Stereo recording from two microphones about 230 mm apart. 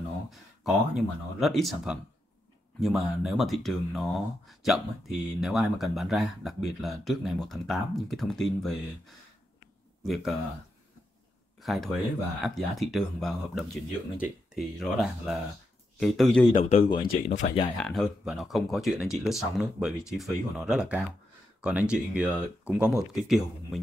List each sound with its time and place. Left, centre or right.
0.3 s speech: centre
11.6 s speech: centre
16.5 s speech: left
17.7 s speech: centre